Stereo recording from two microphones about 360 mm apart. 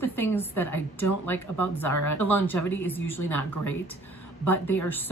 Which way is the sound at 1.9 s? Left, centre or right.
Left.